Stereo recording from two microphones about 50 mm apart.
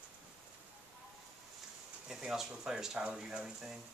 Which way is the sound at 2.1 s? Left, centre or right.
Centre.